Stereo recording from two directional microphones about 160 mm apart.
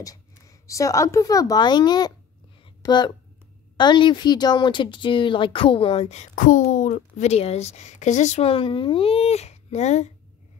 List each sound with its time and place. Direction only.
0.0 s speech: 20° left (ahead or behind)
2.6 s a sound: 30° left (ahead or behind)
3.7 s speech: 30° left (ahead or behind); by 10.1 s 45° left (ahead or behind)